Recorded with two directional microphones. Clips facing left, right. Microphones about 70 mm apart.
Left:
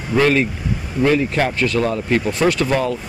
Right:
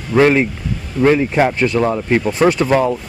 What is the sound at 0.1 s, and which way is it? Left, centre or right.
Speech, centre.